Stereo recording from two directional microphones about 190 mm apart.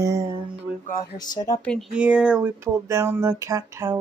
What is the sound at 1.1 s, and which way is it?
Speech, 20° left (ahead or behind).